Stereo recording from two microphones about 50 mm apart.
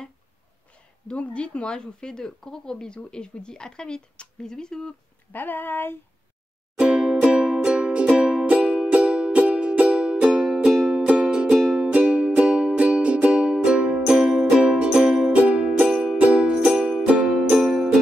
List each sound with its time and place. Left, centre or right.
1.0 s speech: left
5.3 s a sound: left
6.8 s music: centre
10.7 s music: centre
11.1 s music: centre
11.6 s music: centre
11.9 s music: right
14.1 s music: centre
15.3 s music: right
15.9 s music: centre
17.6 s music: centre